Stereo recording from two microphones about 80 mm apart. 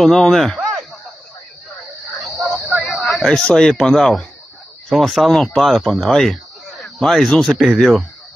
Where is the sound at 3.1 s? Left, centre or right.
Centre.